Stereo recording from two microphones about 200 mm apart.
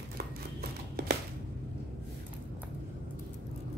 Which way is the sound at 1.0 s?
55° right (ahead or behind).